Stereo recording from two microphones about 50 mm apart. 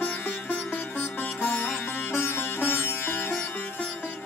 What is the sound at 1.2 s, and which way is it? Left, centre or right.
Sitar, left.